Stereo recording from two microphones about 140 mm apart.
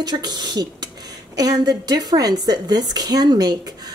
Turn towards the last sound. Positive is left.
turn(degrees=-30)  # may be behind; listen again after turning